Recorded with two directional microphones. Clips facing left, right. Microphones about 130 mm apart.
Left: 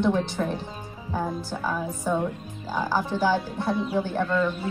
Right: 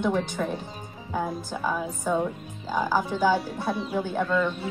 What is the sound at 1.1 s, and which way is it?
A woman's voice, 15° right (ahead or behind).